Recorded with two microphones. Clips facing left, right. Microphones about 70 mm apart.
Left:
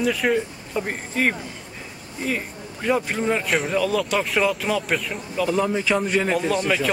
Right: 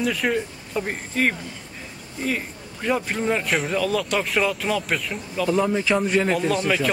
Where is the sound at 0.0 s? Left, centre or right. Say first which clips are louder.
Left 2 dB; centre.